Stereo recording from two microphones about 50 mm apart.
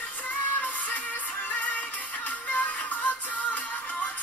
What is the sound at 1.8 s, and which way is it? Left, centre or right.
Music, left.